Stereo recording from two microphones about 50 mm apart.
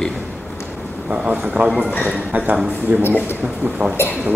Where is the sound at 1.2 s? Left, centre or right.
Right.